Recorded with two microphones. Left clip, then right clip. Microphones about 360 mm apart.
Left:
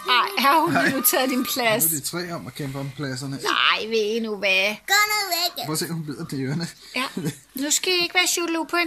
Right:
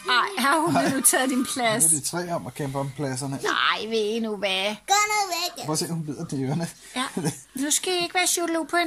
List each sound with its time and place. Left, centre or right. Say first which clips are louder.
0.0 s speech: left 3 dB; centre
2.1 s speech: right 2 dB; centre
3.4 s child singing: left 3 dB; centre
5.2 s a child's voice: left 2 dB; centre
7.6 s child singing: left 3 dB; centre